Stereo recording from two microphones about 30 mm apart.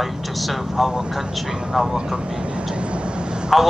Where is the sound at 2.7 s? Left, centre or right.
Right.